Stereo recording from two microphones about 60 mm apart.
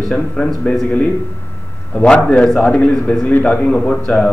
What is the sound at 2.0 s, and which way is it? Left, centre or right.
A man's voice, centre.